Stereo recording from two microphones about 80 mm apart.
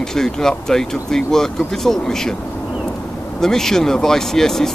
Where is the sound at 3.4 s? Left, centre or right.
Centre.